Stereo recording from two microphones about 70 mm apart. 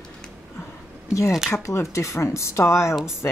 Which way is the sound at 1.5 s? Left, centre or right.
Left.